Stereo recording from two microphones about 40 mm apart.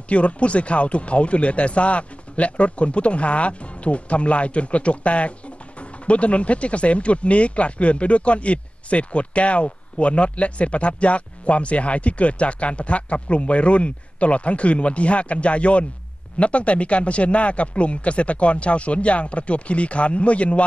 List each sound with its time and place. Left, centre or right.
0.1 s speech: left